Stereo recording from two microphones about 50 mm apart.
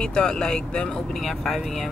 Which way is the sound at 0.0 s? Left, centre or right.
Centre.